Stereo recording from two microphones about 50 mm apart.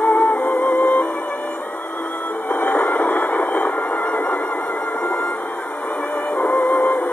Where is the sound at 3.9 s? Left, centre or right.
Centre.